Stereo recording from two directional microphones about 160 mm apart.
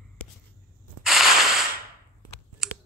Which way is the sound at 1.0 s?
Centre (ahead or behind).